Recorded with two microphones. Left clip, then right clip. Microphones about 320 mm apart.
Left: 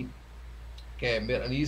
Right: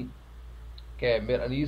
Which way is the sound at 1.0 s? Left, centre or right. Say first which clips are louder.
Right 3 dB; centre.